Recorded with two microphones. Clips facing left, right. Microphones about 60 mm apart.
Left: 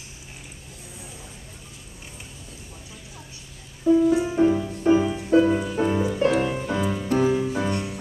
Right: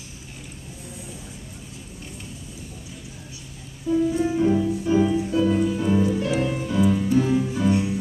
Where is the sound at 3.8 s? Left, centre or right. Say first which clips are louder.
Left 3 dB; left.